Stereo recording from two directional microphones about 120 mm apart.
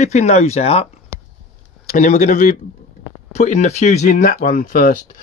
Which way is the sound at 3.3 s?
70° left (ahead or behind).